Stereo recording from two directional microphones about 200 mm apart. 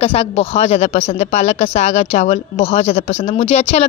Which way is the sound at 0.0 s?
30° left (ahead or behind).